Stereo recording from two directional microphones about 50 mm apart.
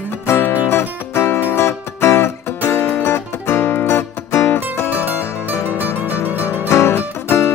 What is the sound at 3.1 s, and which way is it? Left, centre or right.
Music, left.